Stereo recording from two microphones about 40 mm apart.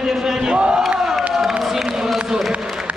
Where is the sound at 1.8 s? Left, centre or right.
Centre.